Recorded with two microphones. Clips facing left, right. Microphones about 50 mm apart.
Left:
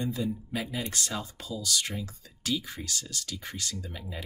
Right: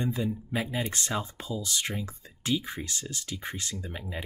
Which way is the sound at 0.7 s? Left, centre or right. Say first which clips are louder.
Right 3 dB; right.